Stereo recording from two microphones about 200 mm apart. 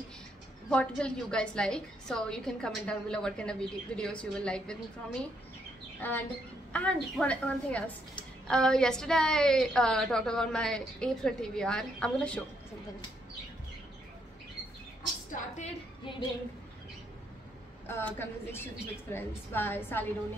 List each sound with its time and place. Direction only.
0.7 s a woman's voice: 5° left (ahead or behind)
5.9 s a woman's voice: 10° left (ahead or behind)
15.5 s a woman's voice: 35° left (ahead or behind)
17.8 s a woman's voice: 10° left (ahead or behind)